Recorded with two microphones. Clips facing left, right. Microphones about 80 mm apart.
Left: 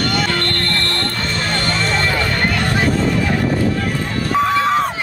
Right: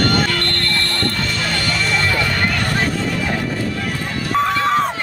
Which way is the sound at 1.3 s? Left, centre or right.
Left.